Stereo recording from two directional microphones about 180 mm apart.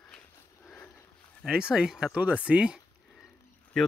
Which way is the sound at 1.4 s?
5° right (ahead or behind).